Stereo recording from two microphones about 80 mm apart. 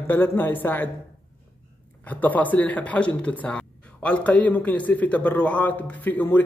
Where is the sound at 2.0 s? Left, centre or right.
Left.